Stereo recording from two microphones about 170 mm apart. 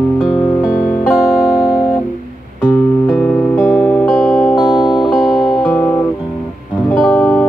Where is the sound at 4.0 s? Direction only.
Centre (ahead or behind).